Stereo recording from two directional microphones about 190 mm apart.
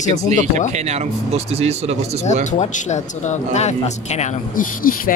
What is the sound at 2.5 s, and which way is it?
Speech, 40° left (ahead or behind).